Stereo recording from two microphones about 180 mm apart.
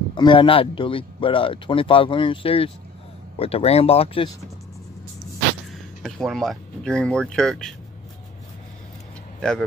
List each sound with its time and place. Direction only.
0.1 s speech: 25° left (ahead or behind)
5.7 s speech: centre (ahead or behind)
9.4 s speech: 5° left (ahead or behind)